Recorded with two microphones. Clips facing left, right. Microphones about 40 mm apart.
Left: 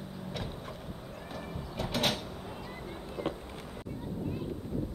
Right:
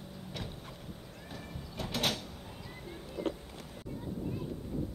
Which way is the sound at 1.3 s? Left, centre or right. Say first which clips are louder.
Left 4 dB; centre.